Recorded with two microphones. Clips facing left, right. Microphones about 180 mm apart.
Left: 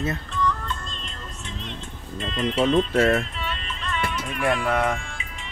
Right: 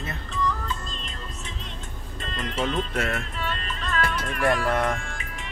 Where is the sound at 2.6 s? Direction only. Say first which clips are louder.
Left 9 dB; 90° left.